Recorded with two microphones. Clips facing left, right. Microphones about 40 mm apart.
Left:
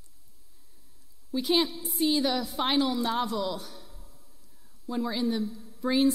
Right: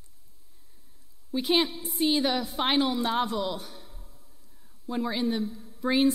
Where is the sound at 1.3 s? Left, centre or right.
Right.